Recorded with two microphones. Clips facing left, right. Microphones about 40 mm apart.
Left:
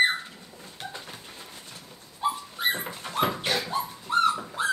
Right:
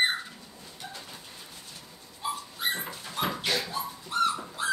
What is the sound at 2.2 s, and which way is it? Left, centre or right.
Dog, left.